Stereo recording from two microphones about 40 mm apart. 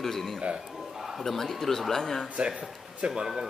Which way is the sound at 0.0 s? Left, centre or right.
Centre.